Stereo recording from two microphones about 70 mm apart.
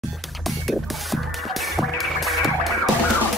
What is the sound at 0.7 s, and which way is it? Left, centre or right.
Music, centre.